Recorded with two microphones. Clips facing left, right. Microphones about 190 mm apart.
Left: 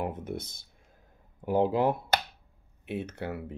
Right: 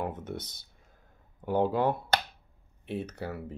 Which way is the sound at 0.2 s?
10° left (ahead or behind).